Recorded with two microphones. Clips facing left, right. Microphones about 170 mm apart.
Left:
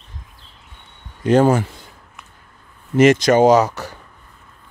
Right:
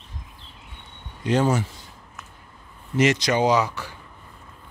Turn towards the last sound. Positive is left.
turn(degrees=45)  # may be behind; listen again after turning